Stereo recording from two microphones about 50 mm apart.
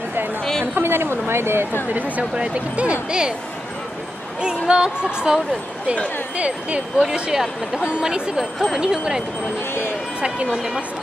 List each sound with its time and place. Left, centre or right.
0.4 s a sound: centre
0.7 s a woman's voice: right
1.9 s speech: right; by 3.3 s centre
4.4 s speech: centre
8.4 s speech: centre
8.7 s speech: centre
10.2 s speech: centre